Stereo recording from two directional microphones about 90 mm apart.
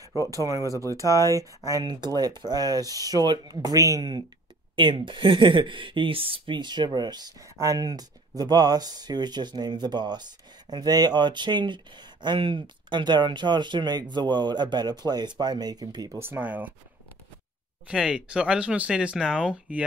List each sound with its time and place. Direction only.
0.2 s speech: 40° right (ahead or behind)
1.0 s speech: 35° left (ahead or behind)
1.3 s speech: 40° right (ahead or behind)
1.9 s speech: 50° right (ahead or behind)
4.7 s speech: 65° right (ahead or behind); by 16.2 s 45° right (ahead or behind)
16.2 s speech: 20° right (ahead or behind)
17.8 s speech: 10° right (ahead or behind)